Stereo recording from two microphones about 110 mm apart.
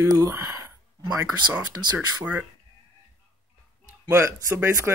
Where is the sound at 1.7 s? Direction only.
40° right (ahead or behind).